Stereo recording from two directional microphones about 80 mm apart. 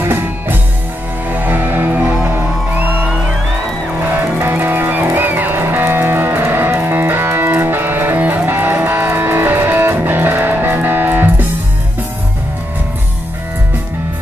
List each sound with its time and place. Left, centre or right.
0.0 s music: right
4.0 s music: right